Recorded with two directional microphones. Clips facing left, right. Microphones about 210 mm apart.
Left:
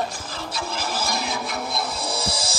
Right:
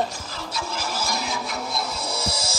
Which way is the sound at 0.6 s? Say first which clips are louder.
Left 1 dB; 55° left (ahead or behind).